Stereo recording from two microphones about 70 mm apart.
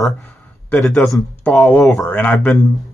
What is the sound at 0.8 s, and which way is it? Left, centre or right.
Speech, centre.